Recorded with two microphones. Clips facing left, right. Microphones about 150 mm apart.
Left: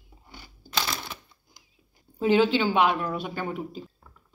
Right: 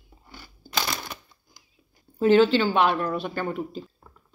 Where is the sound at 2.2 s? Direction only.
15° left (ahead or behind).